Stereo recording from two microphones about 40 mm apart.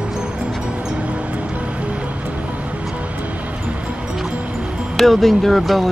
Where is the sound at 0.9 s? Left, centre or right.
Right.